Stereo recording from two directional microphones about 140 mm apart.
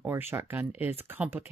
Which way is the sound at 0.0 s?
15° right (ahead or behind).